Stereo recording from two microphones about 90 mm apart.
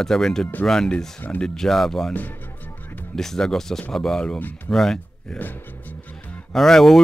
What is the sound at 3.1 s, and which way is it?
Speech, 5° left (ahead or behind).